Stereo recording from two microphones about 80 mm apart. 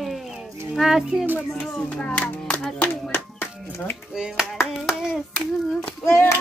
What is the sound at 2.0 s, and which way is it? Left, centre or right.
Speech, centre.